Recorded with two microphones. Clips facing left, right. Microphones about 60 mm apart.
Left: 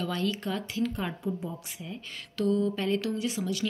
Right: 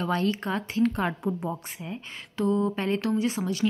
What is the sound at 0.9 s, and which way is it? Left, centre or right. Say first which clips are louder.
Speech: right 5 dB; right.